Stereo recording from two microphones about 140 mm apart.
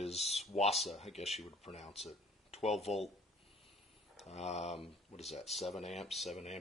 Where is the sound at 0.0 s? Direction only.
50° left (ahead or behind).